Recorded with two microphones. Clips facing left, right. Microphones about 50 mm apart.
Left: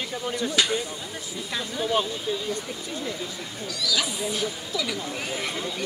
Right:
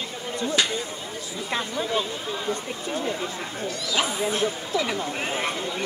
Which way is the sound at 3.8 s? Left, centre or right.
Right.